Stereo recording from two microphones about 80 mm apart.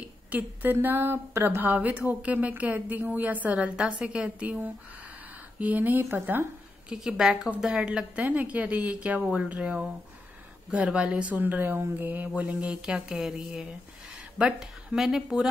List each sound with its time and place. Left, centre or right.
0.3 s a woman's voice: right
6.9 s a woman's voice: centre